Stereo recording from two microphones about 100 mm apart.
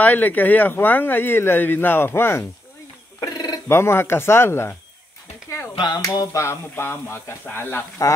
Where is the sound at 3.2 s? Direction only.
35° left (ahead or behind).